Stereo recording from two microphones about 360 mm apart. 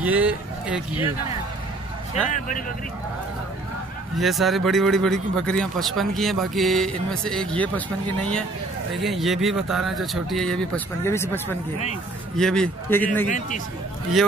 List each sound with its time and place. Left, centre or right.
0.0 s speech: centre
2.3 s speech: left
4.2 s a man's voice: centre